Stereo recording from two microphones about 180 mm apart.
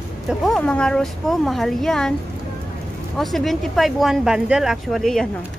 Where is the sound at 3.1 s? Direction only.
Centre (ahead or behind).